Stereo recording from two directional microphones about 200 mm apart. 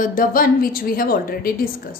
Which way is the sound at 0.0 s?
45° left (ahead or behind).